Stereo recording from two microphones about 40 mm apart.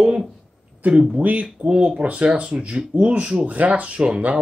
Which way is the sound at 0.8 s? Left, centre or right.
Right.